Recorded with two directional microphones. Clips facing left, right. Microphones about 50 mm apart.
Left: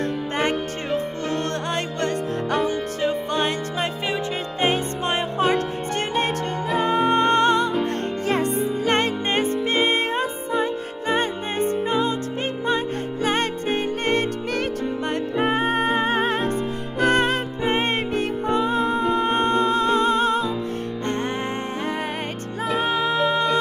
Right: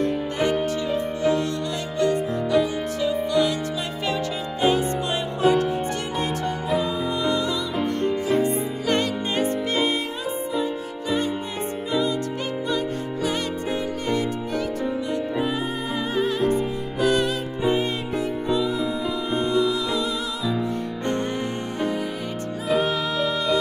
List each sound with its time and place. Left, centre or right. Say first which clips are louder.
0.8 s music: right 1 dB; left
4.6 s music: right 2 dB; left
21.7 s music: even; left